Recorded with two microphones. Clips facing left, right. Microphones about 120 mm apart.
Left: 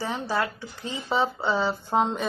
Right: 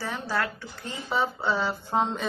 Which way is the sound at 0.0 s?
20° left (ahead or behind).